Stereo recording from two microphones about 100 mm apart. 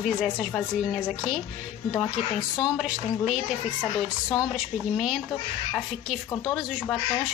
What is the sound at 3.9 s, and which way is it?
Speech, 40° left (ahead or behind).